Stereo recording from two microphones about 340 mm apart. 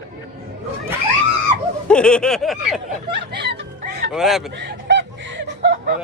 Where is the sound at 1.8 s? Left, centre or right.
Centre.